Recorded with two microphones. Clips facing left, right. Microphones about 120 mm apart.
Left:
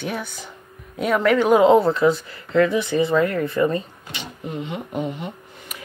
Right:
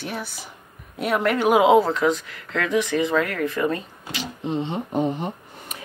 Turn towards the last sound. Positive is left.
turn(degrees=-35)  # may be behind; listen again after turning